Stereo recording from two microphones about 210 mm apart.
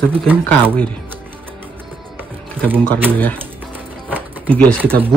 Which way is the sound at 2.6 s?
10° right (ahead or behind).